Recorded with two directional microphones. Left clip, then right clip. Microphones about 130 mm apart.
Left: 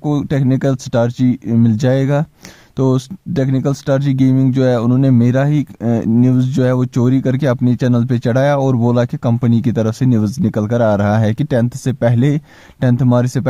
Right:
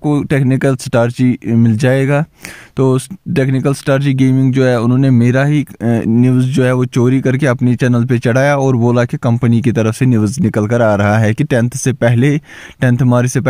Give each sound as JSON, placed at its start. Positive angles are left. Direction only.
{"t": 0.0, "sound": "speech", "side_deg": -20}